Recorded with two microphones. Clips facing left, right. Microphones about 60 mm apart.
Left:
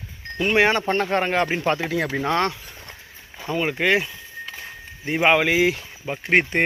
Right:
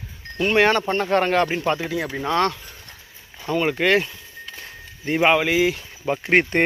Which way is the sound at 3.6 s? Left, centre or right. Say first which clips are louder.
Right 1 dB; centre.